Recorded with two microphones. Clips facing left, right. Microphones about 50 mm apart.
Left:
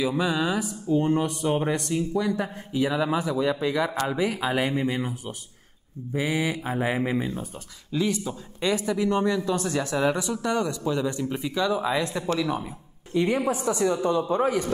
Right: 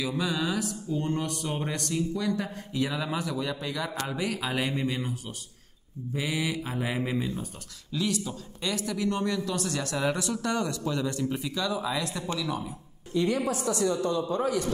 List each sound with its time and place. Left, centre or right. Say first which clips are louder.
0.0 s speech: left 5 dB; centre
6.1 s speech: left 4 dB; left